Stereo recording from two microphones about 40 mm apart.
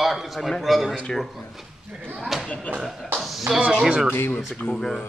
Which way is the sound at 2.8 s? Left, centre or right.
Centre.